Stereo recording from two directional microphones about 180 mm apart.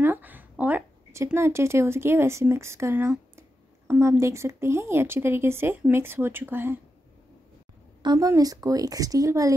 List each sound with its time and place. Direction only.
0.0 s speech: 10° right (ahead or behind)
8.0 s a woman's voice: 20° right (ahead or behind)